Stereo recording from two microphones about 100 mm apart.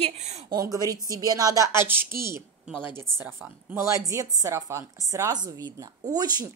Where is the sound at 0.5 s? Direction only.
35° right (ahead or behind).